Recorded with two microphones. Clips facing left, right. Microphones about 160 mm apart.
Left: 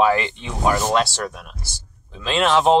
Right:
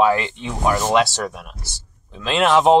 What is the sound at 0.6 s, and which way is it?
Speech, centre (ahead or behind).